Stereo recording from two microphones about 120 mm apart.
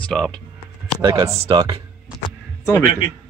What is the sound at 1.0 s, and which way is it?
Speech, 25° right (ahead or behind).